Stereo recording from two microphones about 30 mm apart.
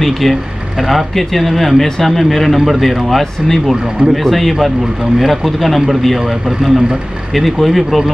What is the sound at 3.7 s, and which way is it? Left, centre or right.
Speech, right.